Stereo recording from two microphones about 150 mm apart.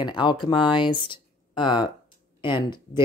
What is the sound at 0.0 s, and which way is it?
Speech, 30° left (ahead or behind).